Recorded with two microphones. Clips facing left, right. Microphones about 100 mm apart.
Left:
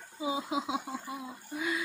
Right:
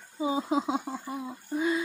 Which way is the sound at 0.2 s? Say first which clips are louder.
Right 5 dB; 35° right (ahead or behind).